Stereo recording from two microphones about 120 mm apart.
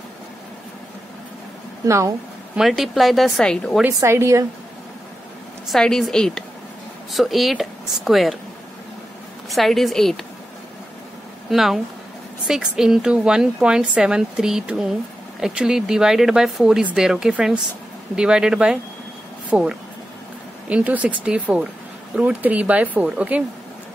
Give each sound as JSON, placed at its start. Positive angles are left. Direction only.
{"t": 1.9, "sound": "a woman's voice", "side_deg": -25}
{"t": 2.5, "sound": "a woman's voice", "side_deg": 0}
{"t": 3.8, "sound": "a woman's voice", "side_deg": -20}
{"t": 5.7, "sound": "a woman's voice", "side_deg": 5}
{"t": 9.5, "sound": "a woman's voice", "side_deg": 0}
{"t": 11.5, "sound": "a woman's voice", "side_deg": 0}